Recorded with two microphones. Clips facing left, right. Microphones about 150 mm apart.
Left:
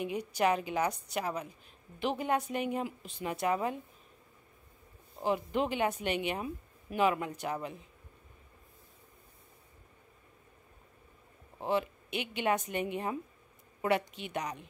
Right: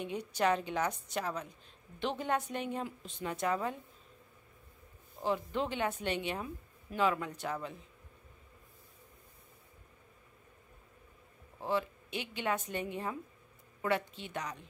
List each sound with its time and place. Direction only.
0.0 s a woman's voice: 10° left (ahead or behind)
5.2 s a woman's voice: 15° left (ahead or behind)
11.6 s a woman's voice: 20° left (ahead or behind)